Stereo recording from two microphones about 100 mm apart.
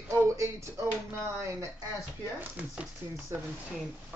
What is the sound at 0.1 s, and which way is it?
Speech, 30° right (ahead or behind).